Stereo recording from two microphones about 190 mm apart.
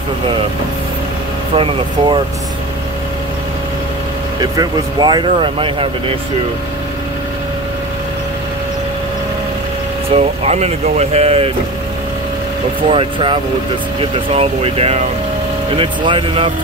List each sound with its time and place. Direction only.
1.5 s speech: 30° right (ahead or behind)
4.4 s speech: 20° right (ahead or behind)
10.1 s speech: 35° right (ahead or behind)
12.9 s speech: 25° right (ahead or behind)